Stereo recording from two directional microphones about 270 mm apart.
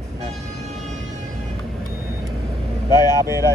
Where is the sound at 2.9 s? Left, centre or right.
Centre.